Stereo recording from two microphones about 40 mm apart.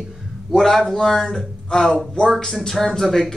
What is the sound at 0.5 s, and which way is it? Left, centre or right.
Speech, centre.